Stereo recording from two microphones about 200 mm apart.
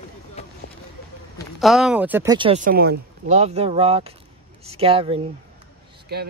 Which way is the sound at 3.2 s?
35° right (ahead or behind).